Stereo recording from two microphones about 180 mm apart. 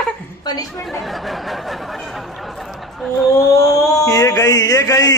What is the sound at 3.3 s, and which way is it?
A man's voice, 15° left (ahead or behind).